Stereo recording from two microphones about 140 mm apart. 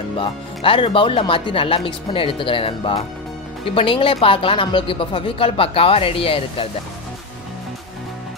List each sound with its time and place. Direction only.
0.2 s speech: 40° left (ahead or behind)